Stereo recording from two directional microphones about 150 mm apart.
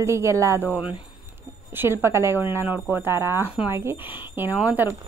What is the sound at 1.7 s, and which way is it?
Speech, 15° right (ahead or behind).